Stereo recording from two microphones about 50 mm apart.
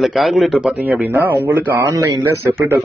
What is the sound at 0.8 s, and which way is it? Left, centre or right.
Speech, right.